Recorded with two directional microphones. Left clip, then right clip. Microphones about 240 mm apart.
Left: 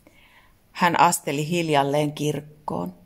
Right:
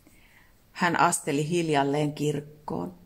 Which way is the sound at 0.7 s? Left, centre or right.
Left.